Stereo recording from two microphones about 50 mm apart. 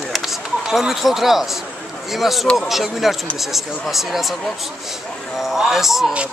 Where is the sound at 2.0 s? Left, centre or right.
Centre.